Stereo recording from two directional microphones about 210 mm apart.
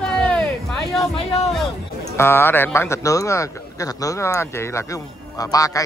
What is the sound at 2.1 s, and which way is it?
Speech, 10° left (ahead or behind).